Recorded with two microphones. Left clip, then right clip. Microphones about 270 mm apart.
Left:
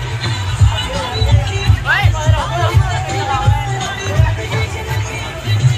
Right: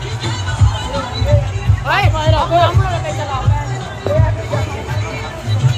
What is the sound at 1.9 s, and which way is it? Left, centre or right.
Music, right.